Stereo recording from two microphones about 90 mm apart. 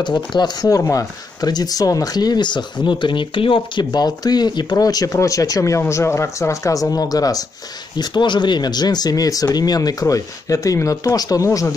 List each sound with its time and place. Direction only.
0.0 s speech: 60° left (ahead or behind)
0.7 s speech: 40° left (ahead or behind); by 3.8 s 75° left (ahead or behind)
3.9 s speech: 50° left (ahead or behind)
8.0 s speech: 55° left (ahead or behind); by 11.7 s 35° left (ahead or behind)